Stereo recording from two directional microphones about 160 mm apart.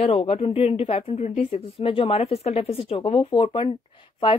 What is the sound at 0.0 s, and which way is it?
A woman's voice, 40° left (ahead or behind).